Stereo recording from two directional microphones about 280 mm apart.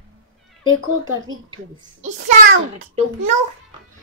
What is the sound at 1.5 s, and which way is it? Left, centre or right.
Speech, right.